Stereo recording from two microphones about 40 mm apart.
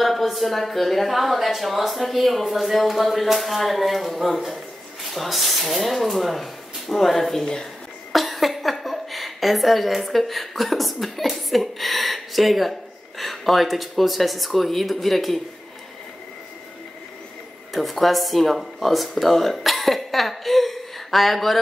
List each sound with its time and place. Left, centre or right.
0.0 s a woman's voice: centre
17.7 s speech: centre